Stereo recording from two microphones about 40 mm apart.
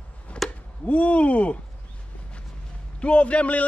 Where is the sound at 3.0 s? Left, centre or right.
Left.